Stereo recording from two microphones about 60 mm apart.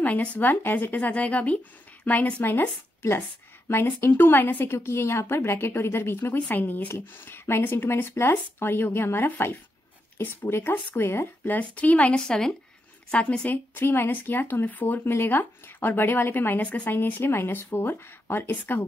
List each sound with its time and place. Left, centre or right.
0.0 s speech: left
0.5 s speech: left
4.0 s speech: left
4.7 s a woman's voice: left
7.2 s speech: left
11.5 s speech: left
13.5 s speech: left
15.0 s a woman's voice: left
15.3 s speech: left
16.6 s speech: left
16.9 s speech: left